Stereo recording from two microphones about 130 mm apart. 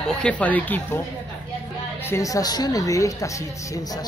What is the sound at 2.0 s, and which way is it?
A woman's voice, 25° left (ahead or behind).